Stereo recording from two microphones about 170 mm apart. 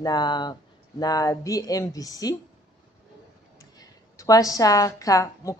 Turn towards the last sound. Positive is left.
turn(degrees=20)  # may be behind; listen again after turning